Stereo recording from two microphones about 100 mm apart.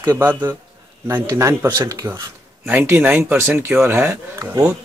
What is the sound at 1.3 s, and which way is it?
Speech, 30° right (ahead or behind).